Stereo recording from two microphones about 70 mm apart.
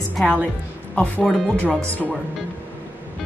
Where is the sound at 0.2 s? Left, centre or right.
Centre.